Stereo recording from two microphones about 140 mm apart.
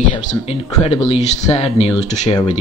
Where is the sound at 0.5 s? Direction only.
45° left (ahead or behind).